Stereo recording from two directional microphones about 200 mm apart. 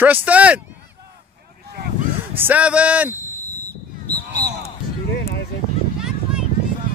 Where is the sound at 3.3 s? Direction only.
10° left (ahead or behind).